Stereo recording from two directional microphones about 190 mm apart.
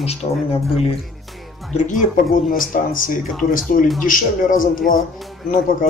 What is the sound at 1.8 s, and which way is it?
Speech, 45° left (ahead or behind).